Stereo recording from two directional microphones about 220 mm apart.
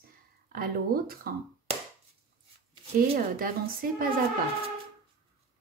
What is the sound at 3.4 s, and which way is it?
Speech, 40° right (ahead or behind).